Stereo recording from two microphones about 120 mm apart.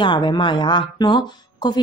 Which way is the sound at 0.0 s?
40° left (ahead or behind).